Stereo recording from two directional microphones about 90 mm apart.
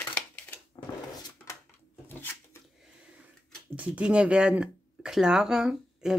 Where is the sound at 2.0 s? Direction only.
25° left (ahead or behind).